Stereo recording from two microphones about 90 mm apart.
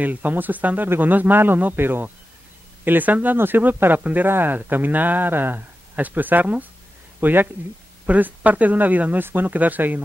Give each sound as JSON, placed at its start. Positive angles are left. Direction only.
{"t": 0.0, "sound": "speech", "side_deg": -20}